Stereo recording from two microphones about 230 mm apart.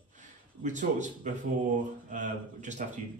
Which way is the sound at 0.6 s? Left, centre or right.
Right.